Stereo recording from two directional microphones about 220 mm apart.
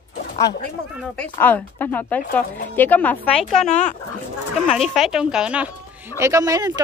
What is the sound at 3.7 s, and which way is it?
Speech, 35° left (ahead or behind).